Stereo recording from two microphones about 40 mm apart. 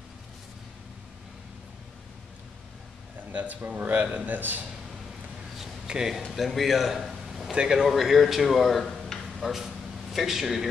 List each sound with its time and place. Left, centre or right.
3.3 s a man's voice: right
5.9 s speech: centre
6.3 s a man's voice: centre
7.2 s a sound: centre
7.9 s speech: centre
9.2 s a sound: centre
10.1 s speech: centre